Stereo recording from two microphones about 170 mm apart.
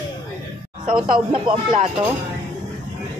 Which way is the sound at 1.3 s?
30° right (ahead or behind).